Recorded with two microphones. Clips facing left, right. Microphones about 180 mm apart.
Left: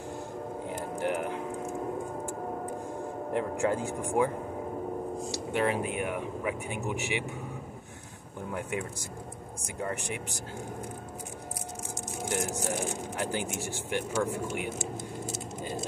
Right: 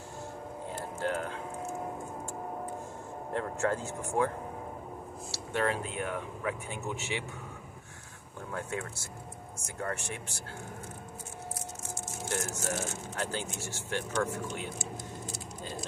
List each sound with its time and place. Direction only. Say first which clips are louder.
0.7 s vehicle: left 2 dB; 15° left (ahead or behind)
3.3 s speech: left 2 dB; 15° left (ahead or behind)
5.3 s speech: left 2 dB; 15° left (ahead or behind)
8.5 s speech: left 3 dB; 15° left (ahead or behind)
12.3 s speech: left 3 dB; 15° left (ahead or behind)